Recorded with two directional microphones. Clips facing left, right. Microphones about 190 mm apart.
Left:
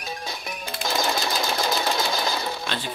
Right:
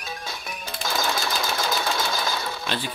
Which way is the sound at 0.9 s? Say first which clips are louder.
Left 1 dB; 20° left (ahead or behind).